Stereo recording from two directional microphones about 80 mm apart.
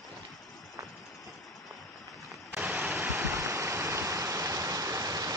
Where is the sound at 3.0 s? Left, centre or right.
Right.